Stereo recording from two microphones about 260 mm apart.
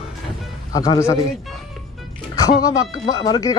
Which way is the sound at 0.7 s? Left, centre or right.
Centre.